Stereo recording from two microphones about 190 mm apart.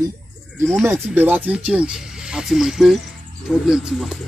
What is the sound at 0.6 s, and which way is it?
Speech, centre (ahead or behind).